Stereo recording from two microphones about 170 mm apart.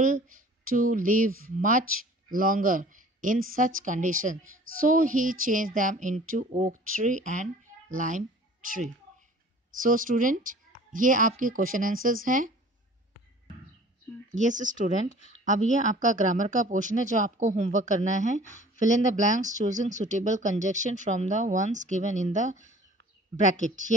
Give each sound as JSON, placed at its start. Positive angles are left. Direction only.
{"t": 0.0, "sound": "a child's voice", "side_deg": -50}
{"t": 14.3, "sound": "speech", "side_deg": -45}
{"t": 15.1, "sound": "speech", "side_deg": 45}
{"t": 15.4, "sound": "speech", "side_deg": -45}